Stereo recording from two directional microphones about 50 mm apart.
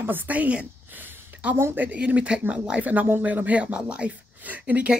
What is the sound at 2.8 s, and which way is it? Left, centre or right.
Speech, right.